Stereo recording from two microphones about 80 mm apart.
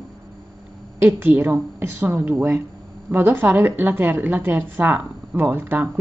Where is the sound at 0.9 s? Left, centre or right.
Right.